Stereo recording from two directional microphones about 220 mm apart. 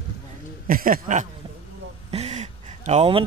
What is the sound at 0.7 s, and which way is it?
Speech, 40° right (ahead or behind).